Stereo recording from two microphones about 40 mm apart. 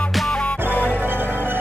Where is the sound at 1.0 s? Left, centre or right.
Right.